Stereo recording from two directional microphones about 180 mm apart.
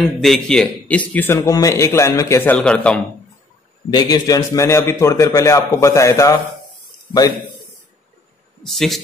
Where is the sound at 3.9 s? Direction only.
25° left (ahead or behind).